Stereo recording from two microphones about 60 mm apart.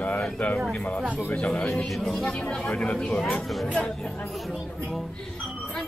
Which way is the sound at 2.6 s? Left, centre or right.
Centre.